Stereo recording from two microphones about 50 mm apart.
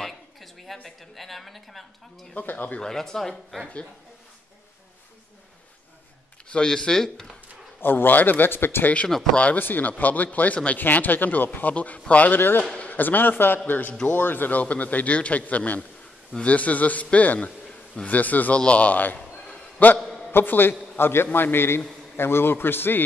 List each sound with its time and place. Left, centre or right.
0.0 s a sound: centre
0.8 s a woman's voice: centre
2.3 s a man's voice: left
2.8 s speech: centre
6.5 s speech: centre
7.8 s speech: left
8.8 s speech: left
9.6 s a man's voice: left
10.8 s a man's voice: left
12.4 s a man's voice: left
19.1 s a sound: left
20.0 s a sound: centre
20.2 s a man's voice: left